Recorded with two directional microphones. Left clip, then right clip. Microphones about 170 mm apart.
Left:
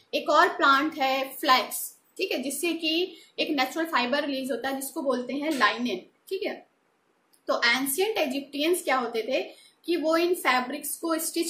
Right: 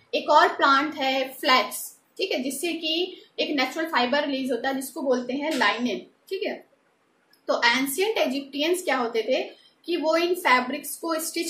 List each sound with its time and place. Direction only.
0.1 s a woman's voice: 25° left (ahead or behind)